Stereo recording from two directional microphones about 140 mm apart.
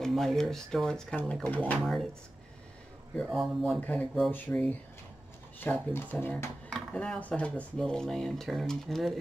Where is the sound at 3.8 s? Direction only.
10° left (ahead or behind).